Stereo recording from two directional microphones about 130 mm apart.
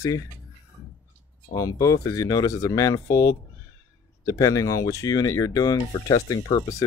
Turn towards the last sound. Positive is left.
turn(degrees=30)  # may be behind; listen again after turning